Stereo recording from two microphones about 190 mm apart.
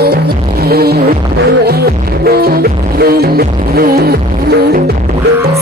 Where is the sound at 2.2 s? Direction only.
55° right (ahead or behind).